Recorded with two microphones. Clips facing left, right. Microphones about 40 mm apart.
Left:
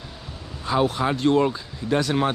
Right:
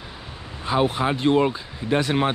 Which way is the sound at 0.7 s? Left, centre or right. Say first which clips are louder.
Even; centre.